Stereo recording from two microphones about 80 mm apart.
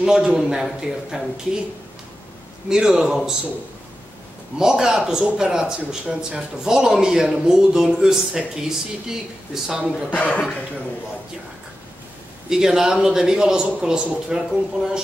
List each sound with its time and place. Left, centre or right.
0.0 s a man's voice: centre
2.7 s a man's voice: centre
4.6 s a man's voice: centre
10.1 s a man's voice: centre
12.4 s a man's voice: centre